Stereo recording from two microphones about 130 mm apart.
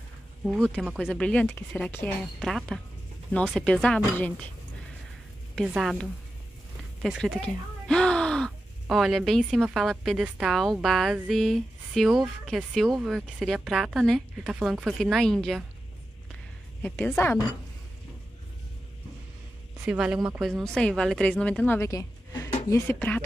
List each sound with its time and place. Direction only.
0.5 s a woman's voice: 5° left (ahead or behind)
1.9 s a woman's voice: 15° left (ahead or behind)
2.4 s a woman's voice: 5° left (ahead or behind)
3.3 s a woman's voice: 15° left (ahead or behind)
5.7 s a woman's voice: 5° right (ahead or behind)
7.0 s speech: centre (ahead or behind)
10.2 s a woman's voice: 10° right (ahead or behind)
10.5 s a woman's voice: centre (ahead or behind)
16.8 s a woman's voice: 10° left (ahead or behind)
19.8 s a woman's voice: 10° right (ahead or behind); by 23.2 s 15° left (ahead or behind)